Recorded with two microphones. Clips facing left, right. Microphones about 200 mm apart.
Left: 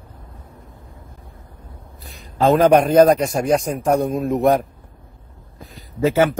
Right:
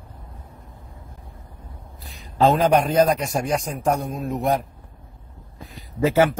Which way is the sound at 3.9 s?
65° left (ahead or behind).